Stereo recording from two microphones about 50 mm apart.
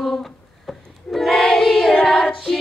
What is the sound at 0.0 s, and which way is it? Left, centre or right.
Singing, centre.